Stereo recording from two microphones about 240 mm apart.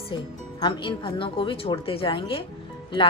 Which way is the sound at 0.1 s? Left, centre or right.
Centre.